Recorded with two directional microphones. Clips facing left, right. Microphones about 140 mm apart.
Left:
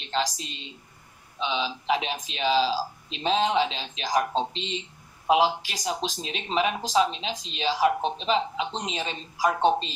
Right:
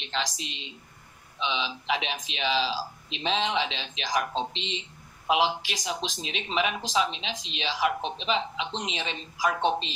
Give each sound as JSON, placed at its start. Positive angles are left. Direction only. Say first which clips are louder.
{"t": 1.4, "sound": "speech", "louder": "left 2 dB", "side_deg": 40}